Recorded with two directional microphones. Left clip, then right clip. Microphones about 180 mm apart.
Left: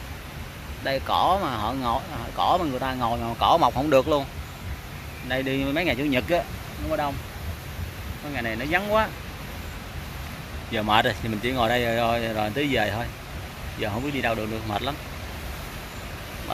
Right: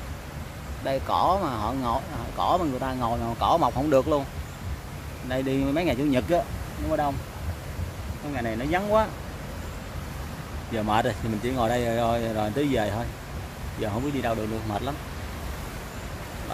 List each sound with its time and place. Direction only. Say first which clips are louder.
0.8 s speech: left 1 dB; 10° right (ahead or behind)
5.3 s speech: left 1 dB; 10° right (ahead or behind)
8.4 s speech: left 2 dB; 15° right (ahead or behind)
10.7 s speech: left 3 dB; 5° right (ahead or behind)